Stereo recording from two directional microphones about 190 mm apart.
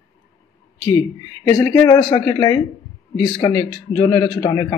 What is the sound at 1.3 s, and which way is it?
A man's voice, 15° left (ahead or behind).